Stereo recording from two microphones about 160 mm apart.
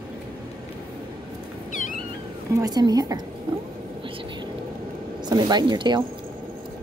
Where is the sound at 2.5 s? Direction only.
25° right (ahead or behind).